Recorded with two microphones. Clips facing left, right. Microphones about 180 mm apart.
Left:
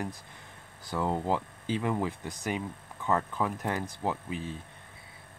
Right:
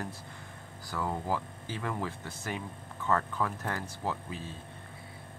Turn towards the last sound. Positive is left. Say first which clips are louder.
# left 3 dB
turn(degrees=15)  # may be behind; listen again after turning